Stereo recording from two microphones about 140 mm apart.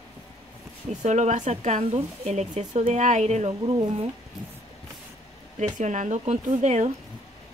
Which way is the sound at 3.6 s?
35° right (ahead or behind).